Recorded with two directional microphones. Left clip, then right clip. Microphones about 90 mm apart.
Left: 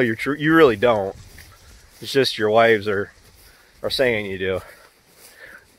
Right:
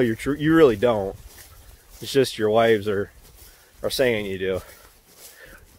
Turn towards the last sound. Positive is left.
turn(degrees=-15)  # may be behind; listen again after turning